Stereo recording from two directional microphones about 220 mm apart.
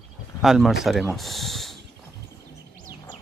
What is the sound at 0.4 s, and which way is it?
Speech, centre (ahead or behind).